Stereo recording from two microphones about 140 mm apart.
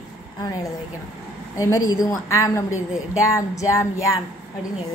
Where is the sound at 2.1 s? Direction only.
20° left (ahead or behind).